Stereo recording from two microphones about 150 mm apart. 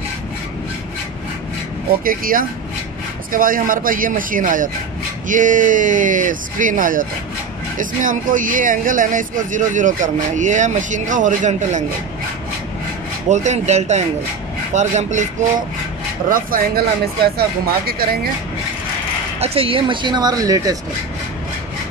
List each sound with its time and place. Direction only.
2.0 s speech: 70° right (ahead or behind); by 11.8 s 55° right (ahead or behind)
13.3 s speech: 50° right (ahead or behind)
16.3 s speech: 70° right (ahead or behind); by 18.3 s 90° right
19.4 s speech: 40° right (ahead or behind); by 20.7 s 25° right (ahead or behind)